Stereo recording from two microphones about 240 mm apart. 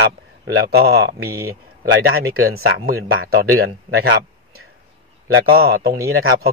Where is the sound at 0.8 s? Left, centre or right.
Right.